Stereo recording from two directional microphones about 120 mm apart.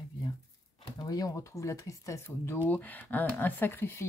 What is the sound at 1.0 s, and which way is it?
Speech, 30° left (ahead or behind).